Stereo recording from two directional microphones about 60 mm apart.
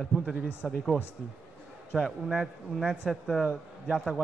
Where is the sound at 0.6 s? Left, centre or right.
Centre.